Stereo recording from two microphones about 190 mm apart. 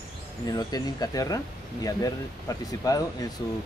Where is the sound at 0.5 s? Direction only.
20° left (ahead or behind).